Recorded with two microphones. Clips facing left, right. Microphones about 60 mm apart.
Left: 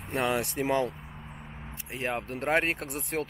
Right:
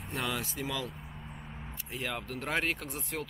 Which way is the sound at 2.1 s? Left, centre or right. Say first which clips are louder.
Left 6 dB; left.